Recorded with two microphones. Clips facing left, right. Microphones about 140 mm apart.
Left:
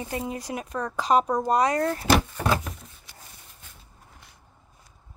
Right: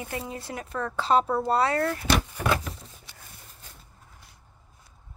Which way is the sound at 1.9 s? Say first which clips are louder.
Left 4 dB; 35° left (ahead or behind).